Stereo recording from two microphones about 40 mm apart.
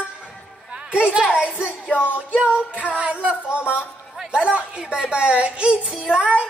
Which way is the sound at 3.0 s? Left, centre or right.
Right.